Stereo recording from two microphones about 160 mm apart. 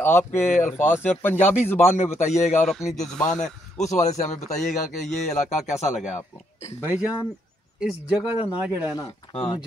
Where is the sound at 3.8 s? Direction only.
45° left (ahead or behind).